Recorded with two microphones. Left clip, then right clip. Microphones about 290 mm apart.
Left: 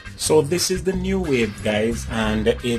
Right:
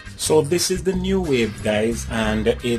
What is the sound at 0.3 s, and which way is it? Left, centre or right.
Speech, centre.